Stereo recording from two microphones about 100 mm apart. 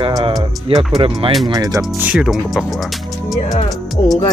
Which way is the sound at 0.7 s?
65° right (ahead or behind).